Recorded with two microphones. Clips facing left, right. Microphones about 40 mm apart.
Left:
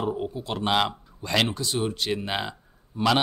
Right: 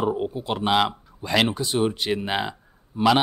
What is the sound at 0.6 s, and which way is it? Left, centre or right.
Speech, centre.